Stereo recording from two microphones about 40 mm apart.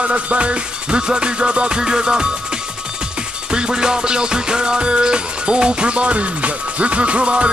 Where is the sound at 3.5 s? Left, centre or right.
Centre.